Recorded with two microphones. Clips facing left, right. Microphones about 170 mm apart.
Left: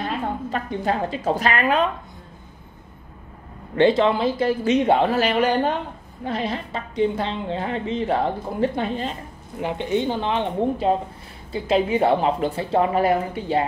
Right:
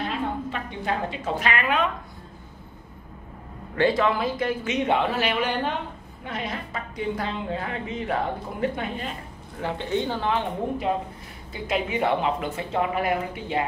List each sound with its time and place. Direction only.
0.5 s speech: 40° left (ahead or behind)
3.7 s speech: 25° left (ahead or behind); by 5.8 s 40° left (ahead or behind)
6.2 s speech: 30° left (ahead or behind)
9.6 s speech: 15° left (ahead or behind)
10.9 s speech: 30° left (ahead or behind)